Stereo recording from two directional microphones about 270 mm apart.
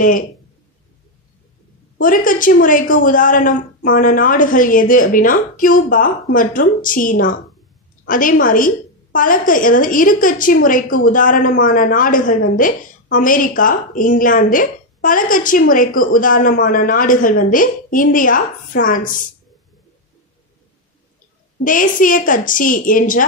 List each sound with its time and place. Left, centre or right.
2.0 s a woman's voice: left
21.6 s a woman's voice: left